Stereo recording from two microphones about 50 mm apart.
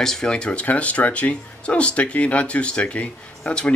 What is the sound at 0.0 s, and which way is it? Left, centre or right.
Speech, centre.